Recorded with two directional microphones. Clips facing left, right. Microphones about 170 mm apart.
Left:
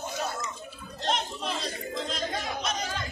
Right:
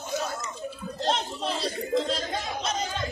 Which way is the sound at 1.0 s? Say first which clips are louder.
Right 2 dB; 35° right (ahead or behind).